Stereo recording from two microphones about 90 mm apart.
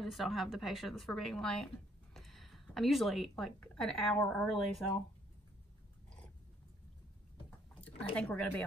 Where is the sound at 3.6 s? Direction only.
10° left (ahead or behind).